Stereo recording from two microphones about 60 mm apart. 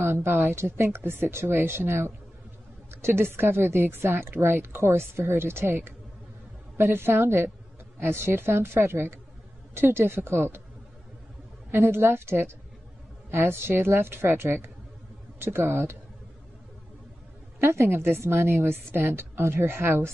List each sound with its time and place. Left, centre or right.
0.0 s a woman's voice: right
11.7 s a woman's voice: right
17.6 s a woman's voice: right